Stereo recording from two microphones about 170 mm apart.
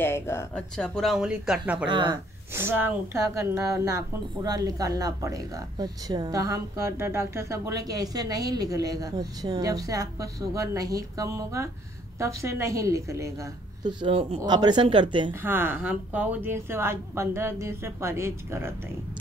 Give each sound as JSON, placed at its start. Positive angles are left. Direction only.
{"t": 0.0, "sound": "speech", "side_deg": 15}
{"t": 0.6, "sound": "speech", "side_deg": 5}
{"t": 1.9, "sound": "a woman's voice", "side_deg": -25}
{"t": 2.5, "sound": "a woman's voice", "side_deg": -15}
{"t": 13.8, "sound": "a woman's voice", "side_deg": -30}
{"t": 15.4, "sound": "speech", "side_deg": -10}